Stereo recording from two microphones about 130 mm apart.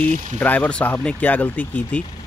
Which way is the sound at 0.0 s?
10° left (ahead or behind).